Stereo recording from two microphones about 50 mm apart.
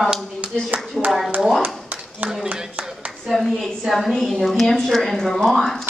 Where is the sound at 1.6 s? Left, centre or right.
Right.